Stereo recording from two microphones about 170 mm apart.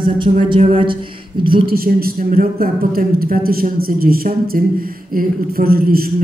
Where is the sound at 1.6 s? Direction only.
60° right (ahead or behind).